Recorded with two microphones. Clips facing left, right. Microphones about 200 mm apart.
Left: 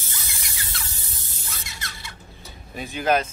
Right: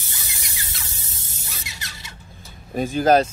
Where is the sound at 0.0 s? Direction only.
15° right (ahead or behind).